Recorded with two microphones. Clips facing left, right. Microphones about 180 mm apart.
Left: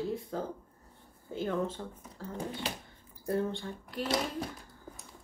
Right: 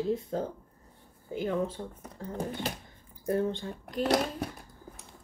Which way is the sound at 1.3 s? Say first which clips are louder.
Right 2 dB; 15° right (ahead or behind).